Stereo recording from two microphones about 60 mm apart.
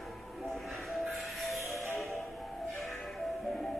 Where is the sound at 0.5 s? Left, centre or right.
Centre.